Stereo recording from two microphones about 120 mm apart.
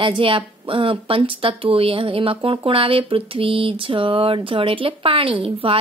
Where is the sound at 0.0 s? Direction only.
45° right (ahead or behind).